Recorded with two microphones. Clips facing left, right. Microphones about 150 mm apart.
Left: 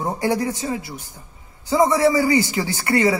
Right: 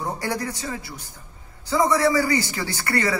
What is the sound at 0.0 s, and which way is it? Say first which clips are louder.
A man's voice: left 6 dB; 20° left (ahead or behind).